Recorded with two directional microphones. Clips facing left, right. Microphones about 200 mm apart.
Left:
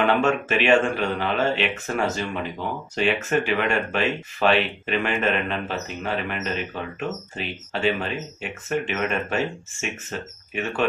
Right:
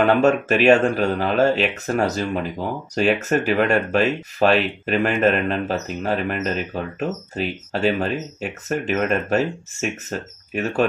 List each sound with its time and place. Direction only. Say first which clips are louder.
0.2 s speech: right 5 dB; 40° right (ahead or behind)